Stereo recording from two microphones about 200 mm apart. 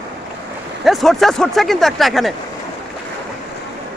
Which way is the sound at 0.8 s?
Centre (ahead or behind).